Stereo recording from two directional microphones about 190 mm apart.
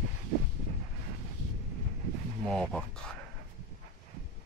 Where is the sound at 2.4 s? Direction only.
5° left (ahead or behind).